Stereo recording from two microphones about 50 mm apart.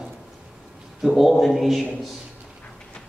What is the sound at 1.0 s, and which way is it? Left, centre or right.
Speech, centre.